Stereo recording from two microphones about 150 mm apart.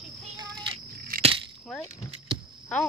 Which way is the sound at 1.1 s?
70° right (ahead or behind).